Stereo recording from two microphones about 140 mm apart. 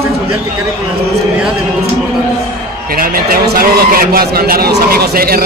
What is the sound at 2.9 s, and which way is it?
A man's voice, 90° right.